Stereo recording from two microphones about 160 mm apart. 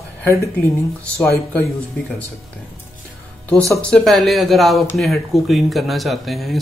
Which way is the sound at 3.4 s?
10° left (ahead or behind).